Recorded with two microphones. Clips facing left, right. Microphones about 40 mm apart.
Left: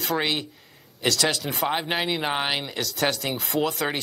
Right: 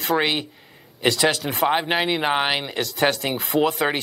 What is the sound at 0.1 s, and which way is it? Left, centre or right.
Speech, centre.